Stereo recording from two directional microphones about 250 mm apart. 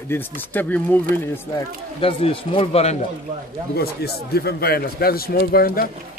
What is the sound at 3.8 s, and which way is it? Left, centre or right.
Speech, left.